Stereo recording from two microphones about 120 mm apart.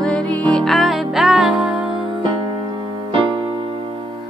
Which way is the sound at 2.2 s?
40° right (ahead or behind).